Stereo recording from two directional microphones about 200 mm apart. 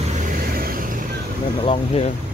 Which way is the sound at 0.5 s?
45° right (ahead or behind).